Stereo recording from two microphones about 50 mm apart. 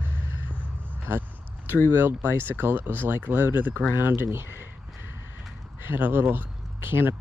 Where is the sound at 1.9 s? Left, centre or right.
Right.